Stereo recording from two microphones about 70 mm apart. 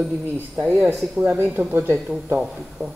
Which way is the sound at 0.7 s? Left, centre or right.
Right.